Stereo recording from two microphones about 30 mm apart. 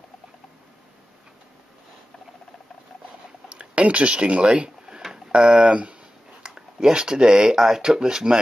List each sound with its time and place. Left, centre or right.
3.4 s speech: right
4.6 s a sound: right
5.1 s speech: right